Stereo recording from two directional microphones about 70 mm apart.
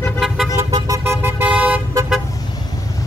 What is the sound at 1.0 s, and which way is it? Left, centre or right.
Vehicle, right.